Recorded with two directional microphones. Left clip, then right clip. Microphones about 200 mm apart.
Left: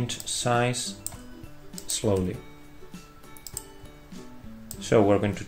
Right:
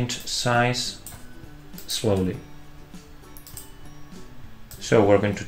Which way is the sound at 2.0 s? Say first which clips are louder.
Right 2 dB; 20° left (ahead or behind).